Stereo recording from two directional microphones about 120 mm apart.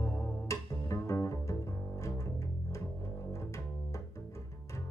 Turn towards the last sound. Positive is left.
turn(degrees=25)  # may be behind; listen again after turning